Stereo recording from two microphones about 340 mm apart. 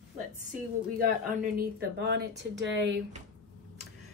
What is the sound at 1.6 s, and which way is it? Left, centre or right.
A woman's voice, right.